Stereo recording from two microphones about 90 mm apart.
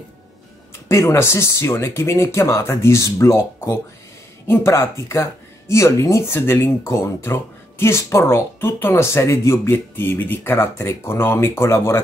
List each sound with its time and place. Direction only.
0.8 s speech: 35° left (ahead or behind)